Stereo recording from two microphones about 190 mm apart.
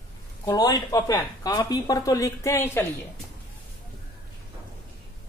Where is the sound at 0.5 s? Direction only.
20° left (ahead or behind).